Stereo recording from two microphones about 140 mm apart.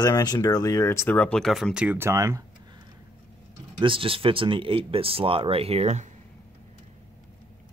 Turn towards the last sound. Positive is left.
turn(degrees=-50)  # may be behind; listen again after turning